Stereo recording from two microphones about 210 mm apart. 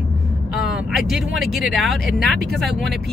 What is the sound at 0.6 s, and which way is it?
Speech, centre (ahead or behind).